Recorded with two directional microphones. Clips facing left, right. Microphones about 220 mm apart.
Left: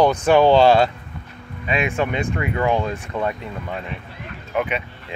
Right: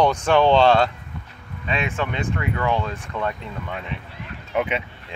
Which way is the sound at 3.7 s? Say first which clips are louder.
Left 2 dB; 35° left (ahead or behind).